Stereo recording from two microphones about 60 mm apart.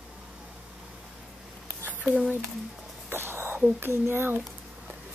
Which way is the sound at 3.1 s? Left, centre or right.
Right.